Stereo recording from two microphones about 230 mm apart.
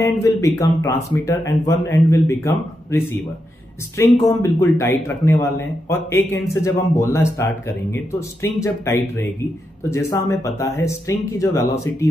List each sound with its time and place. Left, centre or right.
0.0 s a man's voice: centre